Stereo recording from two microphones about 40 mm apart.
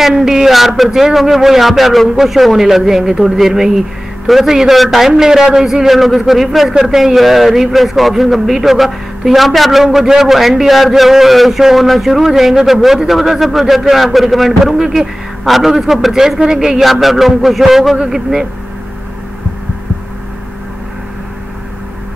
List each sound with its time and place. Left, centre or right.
0.0 s a man's voice: centre
0.8 s a man's voice: centre